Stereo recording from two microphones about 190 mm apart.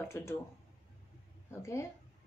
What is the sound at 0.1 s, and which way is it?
Speech, 15° left (ahead or behind).